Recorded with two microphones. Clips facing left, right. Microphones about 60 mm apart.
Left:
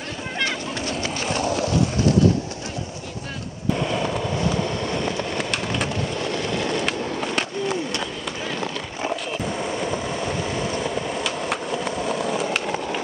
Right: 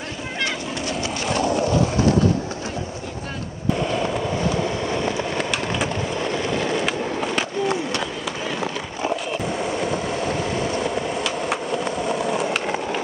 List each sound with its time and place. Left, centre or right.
1.3 s skateboard: right
3.7 s skateboard: centre
9.6 s vehicle: centre